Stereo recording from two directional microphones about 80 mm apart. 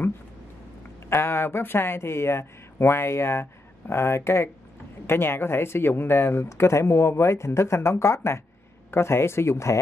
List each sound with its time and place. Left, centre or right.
1.0 s speech: left